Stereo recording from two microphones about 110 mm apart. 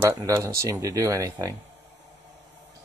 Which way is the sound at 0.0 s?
25° right (ahead or behind).